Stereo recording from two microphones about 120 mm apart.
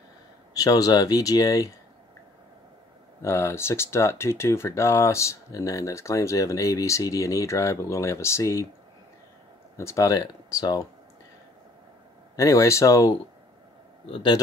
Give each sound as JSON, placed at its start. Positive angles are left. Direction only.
{"t": 0.6, "sound": "speech", "side_deg": 30}
{"t": 3.2, "sound": "speech", "side_deg": 25}
{"t": 9.8, "sound": "speech", "side_deg": 25}
{"t": 12.4, "sound": "speech", "side_deg": 25}
{"t": 14.1, "sound": "speech", "side_deg": 40}